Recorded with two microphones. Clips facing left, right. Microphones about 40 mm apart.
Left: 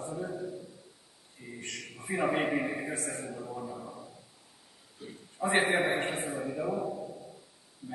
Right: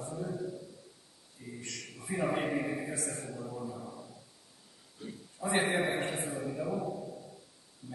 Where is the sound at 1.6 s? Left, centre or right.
Left; by 4.1 s centre.